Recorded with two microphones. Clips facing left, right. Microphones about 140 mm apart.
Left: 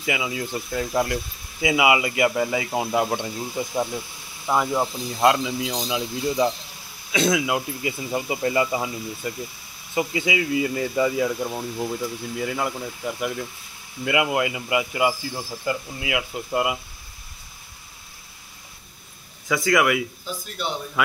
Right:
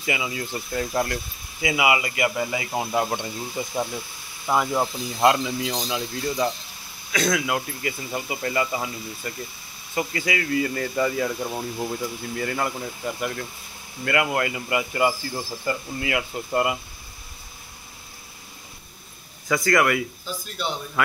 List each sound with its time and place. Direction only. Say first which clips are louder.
0.0 s speech: left 1 dB; 10° left (ahead or behind)
1.6 s speech: left 3 dB; 20° left (ahead or behind)
2.3 s speech: left 3 dB; centre (ahead or behind)
19.4 s speech: even; 5° left (ahead or behind)